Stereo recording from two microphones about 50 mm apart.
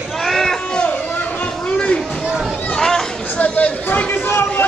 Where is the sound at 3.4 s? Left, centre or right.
Left.